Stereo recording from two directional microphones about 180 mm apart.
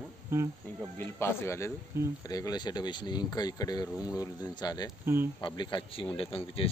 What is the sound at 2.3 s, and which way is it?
Speech, 20° left (ahead or behind).